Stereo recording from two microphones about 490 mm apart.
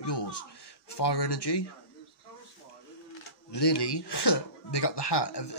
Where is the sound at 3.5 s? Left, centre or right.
Left.